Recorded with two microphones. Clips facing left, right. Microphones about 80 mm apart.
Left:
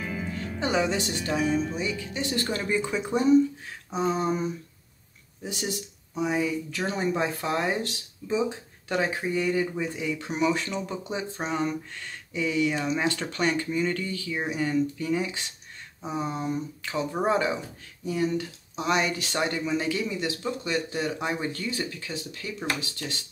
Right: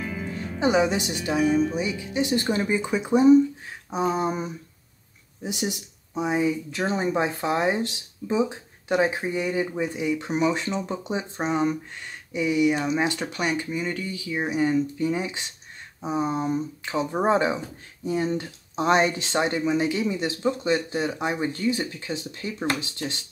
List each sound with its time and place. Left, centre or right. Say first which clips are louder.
0.0 s music: right 1 dB; centre
0.6 s speech: right 5 dB; centre